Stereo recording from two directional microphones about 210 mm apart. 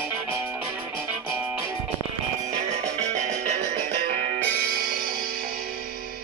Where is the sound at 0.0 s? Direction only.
10° right (ahead or behind).